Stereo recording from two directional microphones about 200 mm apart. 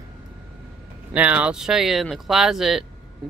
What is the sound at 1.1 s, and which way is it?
Speech, 5° right (ahead or behind).